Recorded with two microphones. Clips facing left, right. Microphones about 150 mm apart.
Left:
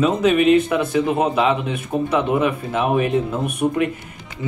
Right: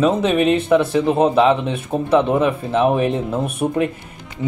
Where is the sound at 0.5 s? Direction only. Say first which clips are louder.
Right 1 dB; 30° right (ahead or behind).